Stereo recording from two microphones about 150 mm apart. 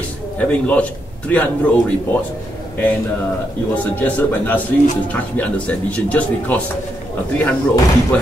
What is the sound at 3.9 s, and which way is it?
A man's voice, 10° left (ahead or behind).